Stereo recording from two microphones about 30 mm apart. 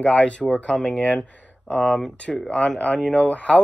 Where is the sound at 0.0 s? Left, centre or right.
Left.